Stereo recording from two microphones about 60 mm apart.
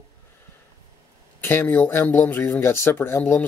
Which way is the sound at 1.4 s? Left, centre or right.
Left.